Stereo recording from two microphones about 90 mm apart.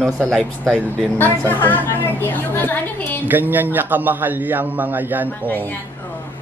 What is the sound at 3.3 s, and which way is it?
A man's voice, 20° right (ahead or behind).